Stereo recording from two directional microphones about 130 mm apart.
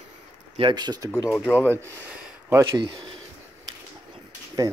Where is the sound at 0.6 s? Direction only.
35° right (ahead or behind).